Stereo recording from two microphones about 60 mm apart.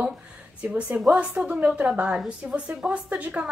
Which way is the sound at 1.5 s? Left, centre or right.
Centre.